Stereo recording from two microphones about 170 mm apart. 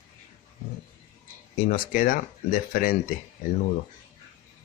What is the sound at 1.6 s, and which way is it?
Speech, 55° left (ahead or behind).